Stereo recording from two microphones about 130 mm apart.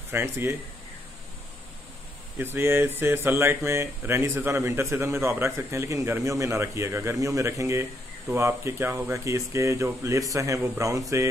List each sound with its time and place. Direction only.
0.1 s speech: 15° right (ahead or behind)
2.3 s speech: 15° right (ahead or behind)